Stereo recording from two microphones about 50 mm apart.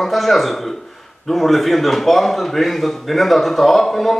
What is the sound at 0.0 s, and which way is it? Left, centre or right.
A man's voice, centre.